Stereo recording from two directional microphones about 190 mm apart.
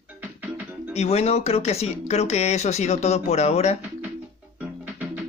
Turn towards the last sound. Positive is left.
turn(degrees=-10)  # may be behind; listen again after turning